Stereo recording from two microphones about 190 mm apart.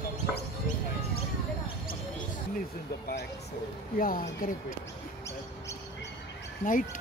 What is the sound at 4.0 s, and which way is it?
Speech, 50° left (ahead or behind).